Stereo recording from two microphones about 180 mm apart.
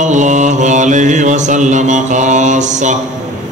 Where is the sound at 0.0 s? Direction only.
40° right (ahead or behind).